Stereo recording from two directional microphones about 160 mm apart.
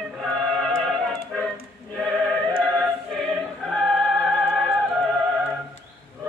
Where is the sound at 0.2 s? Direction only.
5° left (ahead or behind).